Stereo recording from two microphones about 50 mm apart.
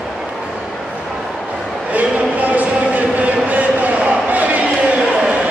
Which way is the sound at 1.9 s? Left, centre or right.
Right.